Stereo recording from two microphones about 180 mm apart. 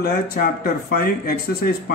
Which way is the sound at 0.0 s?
55° left (ahead or behind).